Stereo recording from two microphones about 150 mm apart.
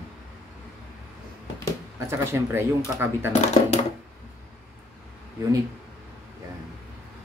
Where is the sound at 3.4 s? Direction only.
50° left (ahead or behind).